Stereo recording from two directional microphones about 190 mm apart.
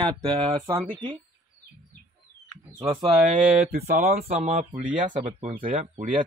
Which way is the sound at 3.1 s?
40° right (ahead or behind).